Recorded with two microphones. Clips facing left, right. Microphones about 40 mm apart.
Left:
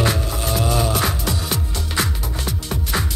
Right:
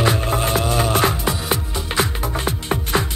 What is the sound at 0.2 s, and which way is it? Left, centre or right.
Music, right.